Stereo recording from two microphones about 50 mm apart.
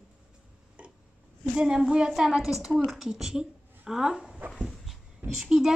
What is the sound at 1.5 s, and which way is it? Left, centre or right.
Speech, centre.